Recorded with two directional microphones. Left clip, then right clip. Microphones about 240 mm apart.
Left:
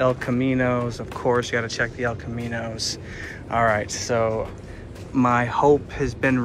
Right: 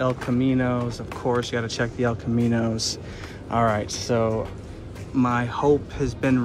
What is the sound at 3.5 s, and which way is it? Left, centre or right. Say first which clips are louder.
Speech: left 2 dB; centre.